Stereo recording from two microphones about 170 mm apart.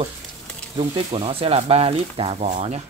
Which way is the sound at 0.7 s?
30° right (ahead or behind).